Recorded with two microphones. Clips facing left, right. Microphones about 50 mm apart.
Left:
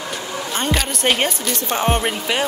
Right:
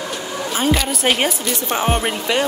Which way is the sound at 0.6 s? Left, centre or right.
Centre.